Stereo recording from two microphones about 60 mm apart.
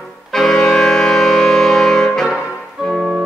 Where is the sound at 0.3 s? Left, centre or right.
Centre.